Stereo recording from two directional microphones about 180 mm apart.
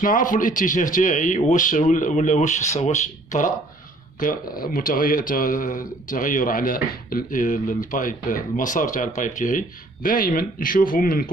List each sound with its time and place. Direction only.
0.0 s a man's voice: 45° left (ahead or behind)